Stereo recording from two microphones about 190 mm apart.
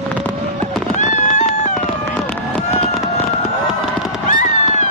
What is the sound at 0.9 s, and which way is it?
Cat, 40° left (ahead or behind).